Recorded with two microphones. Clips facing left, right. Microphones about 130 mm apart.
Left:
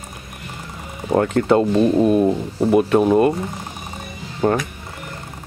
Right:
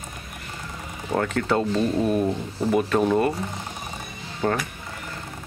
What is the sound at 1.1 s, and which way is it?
Speech, 25° left (ahead or behind).